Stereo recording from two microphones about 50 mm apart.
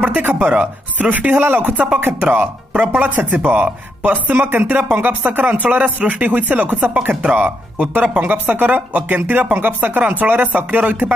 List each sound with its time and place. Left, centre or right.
0.0 s speech: right
3.3 s speech: right